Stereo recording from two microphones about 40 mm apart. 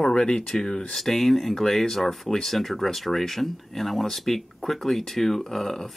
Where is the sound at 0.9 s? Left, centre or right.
Centre.